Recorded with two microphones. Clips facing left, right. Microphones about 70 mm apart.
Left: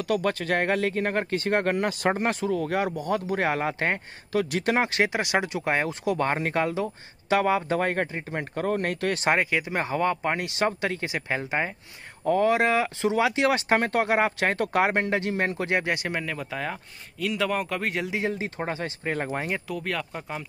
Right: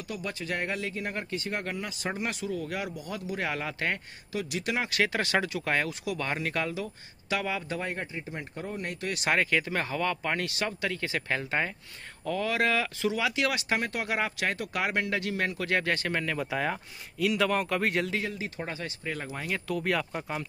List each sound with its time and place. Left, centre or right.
0.0 s speech: left
2.1 s speech: left
4.3 s speech: left
4.9 s speech: left
6.0 s speech: left
7.8 s speech: left
9.1 s speech: left
9.4 s speech: centre
11.1 s speech: centre
12.3 s speech: left
12.5 s speech: left
16.3 s speech: centre
18.2 s speech: left
19.7 s speech: centre